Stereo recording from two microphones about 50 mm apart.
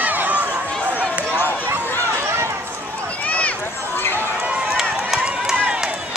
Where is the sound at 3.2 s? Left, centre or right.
Left.